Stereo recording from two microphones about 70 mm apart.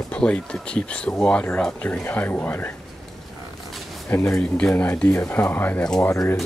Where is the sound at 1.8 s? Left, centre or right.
Left.